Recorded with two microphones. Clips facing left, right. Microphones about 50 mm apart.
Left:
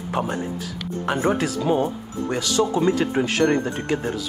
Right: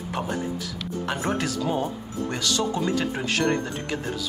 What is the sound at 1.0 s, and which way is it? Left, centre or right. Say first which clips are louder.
Speech: left 5 dB; centre.